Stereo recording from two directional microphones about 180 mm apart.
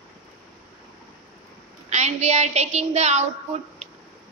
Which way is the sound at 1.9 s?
40° right (ahead or behind).